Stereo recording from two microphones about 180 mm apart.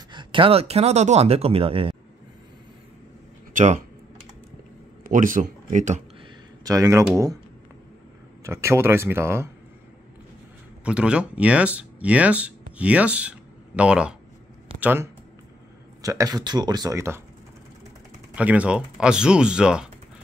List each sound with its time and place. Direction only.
0.1 s speech: 25° right (ahead or behind)
3.5 s speech: 40° right (ahead or behind)
5.0 s a man's voice: 45° right (ahead or behind)
6.6 s speech: 20° right (ahead or behind)
8.5 s speech: 15° right (ahead or behind)
10.8 s speech: 5° right (ahead or behind)
18.3 s speech: 10° right (ahead or behind)